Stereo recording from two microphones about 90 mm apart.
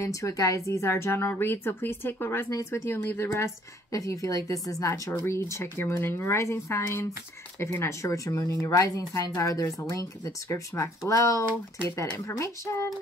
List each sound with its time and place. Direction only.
0.0 s speech: 35° left (ahead or behind)